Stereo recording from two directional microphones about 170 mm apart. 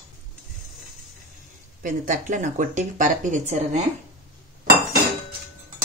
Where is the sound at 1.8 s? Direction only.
50° right (ahead or behind).